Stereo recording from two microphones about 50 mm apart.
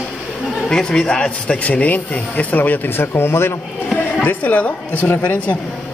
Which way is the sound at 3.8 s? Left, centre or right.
Left.